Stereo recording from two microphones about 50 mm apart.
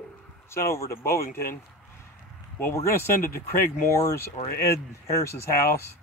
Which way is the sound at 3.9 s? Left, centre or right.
Left.